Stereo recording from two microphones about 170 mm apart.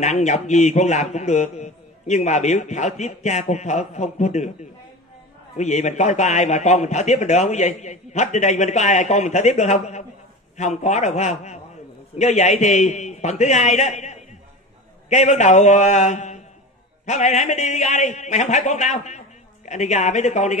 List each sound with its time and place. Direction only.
0.0 s speech: 45° left (ahead or behind)
5.6 s speech: 45° left (ahead or behind)